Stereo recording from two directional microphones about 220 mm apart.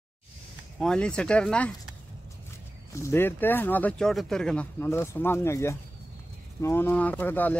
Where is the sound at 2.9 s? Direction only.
10° left (ahead or behind).